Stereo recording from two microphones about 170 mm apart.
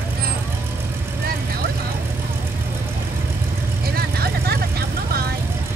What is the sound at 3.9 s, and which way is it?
Vehicle, 65° right (ahead or behind).